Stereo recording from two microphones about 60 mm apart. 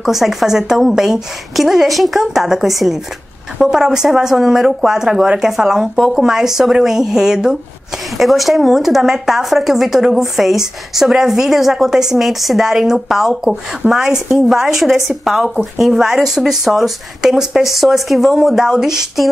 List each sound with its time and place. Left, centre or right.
0.0 s speech: centre